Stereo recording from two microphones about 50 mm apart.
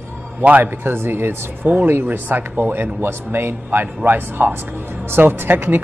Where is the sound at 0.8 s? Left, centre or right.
Right.